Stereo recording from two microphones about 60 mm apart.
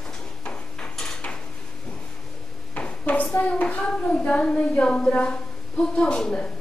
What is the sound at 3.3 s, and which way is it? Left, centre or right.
Hands, left.